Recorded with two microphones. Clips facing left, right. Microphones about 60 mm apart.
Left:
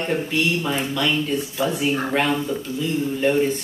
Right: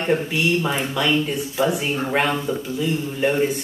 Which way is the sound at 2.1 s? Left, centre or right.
Centre.